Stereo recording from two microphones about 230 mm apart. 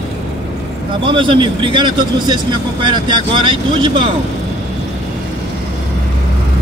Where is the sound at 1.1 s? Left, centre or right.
Right.